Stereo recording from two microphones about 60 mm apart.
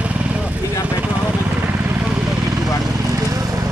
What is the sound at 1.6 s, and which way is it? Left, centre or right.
Vehicle, right.